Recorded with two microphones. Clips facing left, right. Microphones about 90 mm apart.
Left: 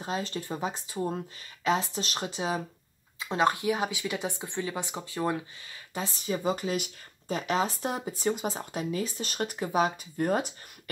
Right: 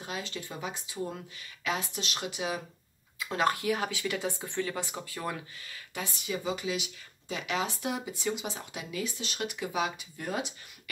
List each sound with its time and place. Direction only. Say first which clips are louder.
0.0 s speech: left 5 dB; 35° left (ahead or behind)
3.2 s speech: left 3 dB; 25° left (ahead or behind); by 10.5 s 45° left (ahead or behind)